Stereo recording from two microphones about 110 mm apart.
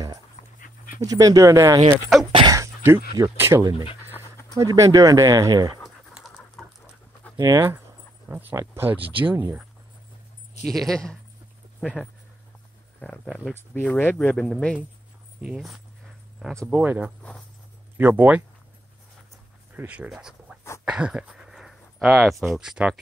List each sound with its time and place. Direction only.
0.4 s dog: 90° left
1.0 s speech: 35° right (ahead or behind)
2.1 s speech: centre (ahead or behind)
2.4 s speech: 30° right (ahead or behind)
3.7 s speech: 55° left (ahead or behind)
4.6 s speech: 30° right (ahead or behind)
6.1 s patter: centre (ahead or behind)
7.3 s speech: 30° right (ahead or behind)
10.7 s speech: 5° left (ahead or behind)
15.4 s speech: centre (ahead or behind)
16.7 s speech: 15° right (ahead or behind)
19.7 s speech: 15° right (ahead or behind)